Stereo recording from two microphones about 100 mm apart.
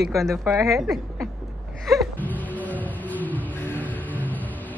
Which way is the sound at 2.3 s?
15° left (ahead or behind).